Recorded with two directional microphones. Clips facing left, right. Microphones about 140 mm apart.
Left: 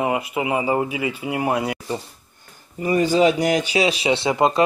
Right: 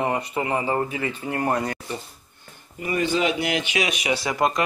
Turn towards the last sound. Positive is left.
turn(degrees=25)  # may be behind; listen again after turning